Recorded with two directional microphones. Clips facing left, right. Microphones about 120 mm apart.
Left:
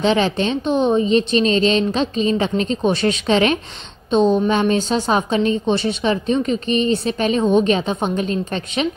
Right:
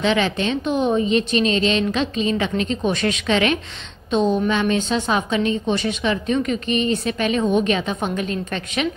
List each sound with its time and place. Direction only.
0.0 s a woman's voice: 35° left (ahead or behind)